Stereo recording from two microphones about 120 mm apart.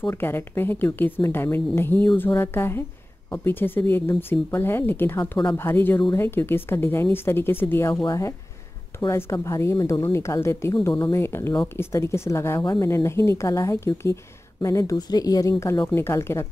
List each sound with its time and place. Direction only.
0.1 s speech: 20° left (ahead or behind)
9.8 s speech: 35° left (ahead or behind)
10.0 s speech: 25° left (ahead or behind)